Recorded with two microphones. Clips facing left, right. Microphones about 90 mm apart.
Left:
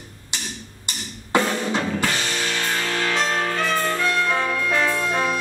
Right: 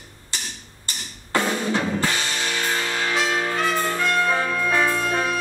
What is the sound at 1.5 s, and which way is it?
Drum, 15° right (ahead or behind).